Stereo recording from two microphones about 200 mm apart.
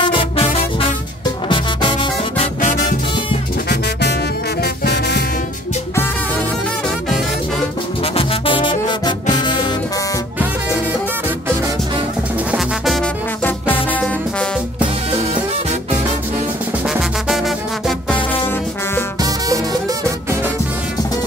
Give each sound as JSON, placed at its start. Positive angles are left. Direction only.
{"t": 0.1, "sound": "music", "side_deg": 25}
{"t": 3.6, "sound": "music", "side_deg": 55}
{"t": 8.0, "sound": "music", "side_deg": 30}
{"t": 12.4, "sound": "music", "side_deg": 0}
{"t": 16.8, "sound": "music", "side_deg": 0}
{"t": 19.2, "sound": "music", "side_deg": -15}